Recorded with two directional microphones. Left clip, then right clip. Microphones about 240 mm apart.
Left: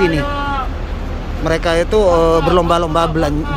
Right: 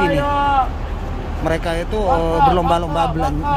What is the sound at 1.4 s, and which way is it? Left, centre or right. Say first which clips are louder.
Speech: left 6 dB; centre.